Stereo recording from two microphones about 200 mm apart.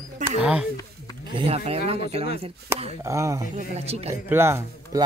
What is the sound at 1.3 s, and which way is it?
Speech, 30° right (ahead or behind).